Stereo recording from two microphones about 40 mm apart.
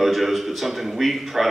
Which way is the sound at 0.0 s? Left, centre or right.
Centre.